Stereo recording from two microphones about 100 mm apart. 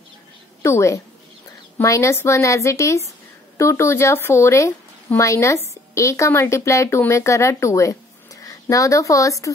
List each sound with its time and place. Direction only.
0.6 s a woman's voice: 30° left (ahead or behind)